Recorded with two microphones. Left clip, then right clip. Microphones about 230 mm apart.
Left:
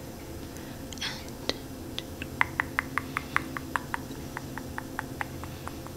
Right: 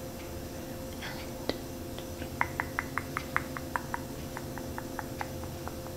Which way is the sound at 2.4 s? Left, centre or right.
Left.